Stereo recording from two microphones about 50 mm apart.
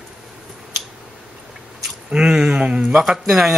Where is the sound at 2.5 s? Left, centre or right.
Right.